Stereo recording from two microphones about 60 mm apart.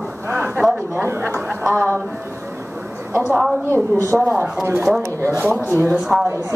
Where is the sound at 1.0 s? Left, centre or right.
Right.